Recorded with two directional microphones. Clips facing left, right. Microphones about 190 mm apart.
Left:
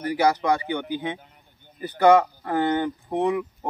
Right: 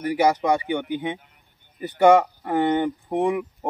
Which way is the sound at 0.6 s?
20° right (ahead or behind).